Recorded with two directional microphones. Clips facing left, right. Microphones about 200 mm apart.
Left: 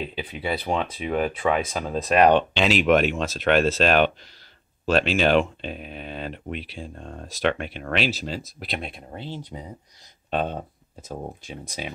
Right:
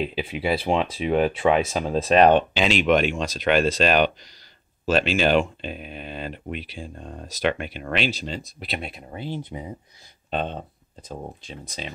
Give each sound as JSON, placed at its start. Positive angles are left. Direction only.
{"t": 0.4, "sound": "speech", "side_deg": -5}
{"t": 1.9, "sound": "speech", "side_deg": -20}
{"t": 2.5, "sound": "speech", "side_deg": 0}
{"t": 10.3, "sound": "speech", "side_deg": 5}